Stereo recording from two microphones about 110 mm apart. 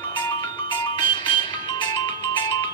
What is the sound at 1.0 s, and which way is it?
Music, 45° left (ahead or behind).